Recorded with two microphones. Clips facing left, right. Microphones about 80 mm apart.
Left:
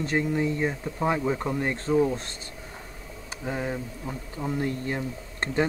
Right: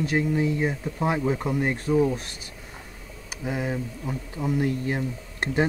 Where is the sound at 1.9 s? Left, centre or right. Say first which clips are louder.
Right 1 dB; centre.